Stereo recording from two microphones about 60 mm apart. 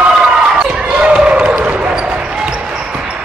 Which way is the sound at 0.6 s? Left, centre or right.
Centre.